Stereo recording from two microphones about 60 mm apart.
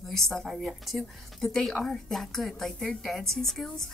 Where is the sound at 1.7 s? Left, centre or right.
Centre.